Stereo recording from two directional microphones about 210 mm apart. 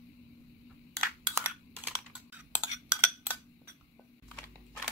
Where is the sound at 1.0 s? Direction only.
10° right (ahead or behind).